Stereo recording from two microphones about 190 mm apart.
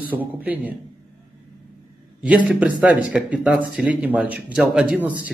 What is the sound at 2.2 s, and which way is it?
Speech, 5° right (ahead or behind).